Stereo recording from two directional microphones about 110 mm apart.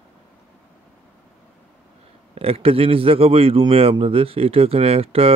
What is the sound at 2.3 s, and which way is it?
Speech, 60° right (ahead or behind).